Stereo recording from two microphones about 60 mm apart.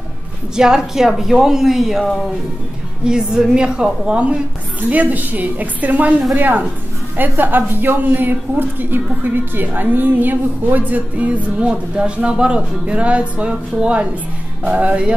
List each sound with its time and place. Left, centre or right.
0.6 s speech: centre
4.8 s a woman's voice: right